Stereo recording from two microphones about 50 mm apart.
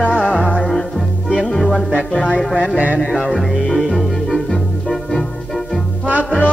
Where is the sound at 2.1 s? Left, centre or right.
Centre.